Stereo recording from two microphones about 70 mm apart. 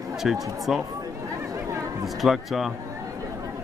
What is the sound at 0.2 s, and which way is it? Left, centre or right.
Speech, centre.